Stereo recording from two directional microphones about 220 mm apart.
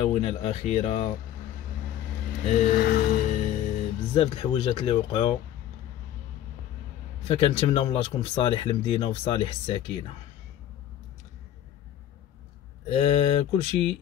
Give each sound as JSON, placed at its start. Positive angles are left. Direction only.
{"t": 0.1, "sound": "speech", "side_deg": 30}
{"t": 2.4, "sound": "speech", "side_deg": 35}
{"t": 7.2, "sound": "speech", "side_deg": 25}
{"t": 12.8, "sound": "speech", "side_deg": 30}